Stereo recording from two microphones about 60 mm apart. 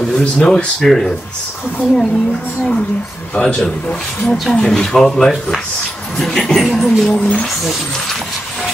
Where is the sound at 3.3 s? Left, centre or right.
Centre.